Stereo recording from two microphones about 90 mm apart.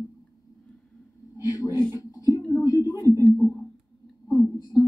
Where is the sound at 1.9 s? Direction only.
45° left (ahead or behind).